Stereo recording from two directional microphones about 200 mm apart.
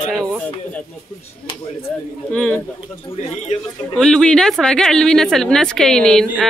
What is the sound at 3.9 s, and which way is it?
Speech, 5° left (ahead or behind).